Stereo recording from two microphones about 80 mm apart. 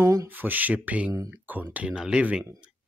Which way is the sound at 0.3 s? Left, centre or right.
Right.